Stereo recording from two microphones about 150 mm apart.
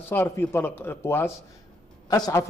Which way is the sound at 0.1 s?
15° left (ahead or behind).